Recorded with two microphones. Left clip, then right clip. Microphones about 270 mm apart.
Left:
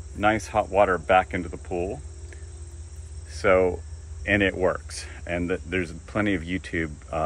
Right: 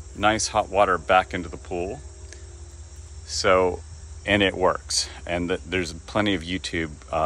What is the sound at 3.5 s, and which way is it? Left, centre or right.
Speech, centre.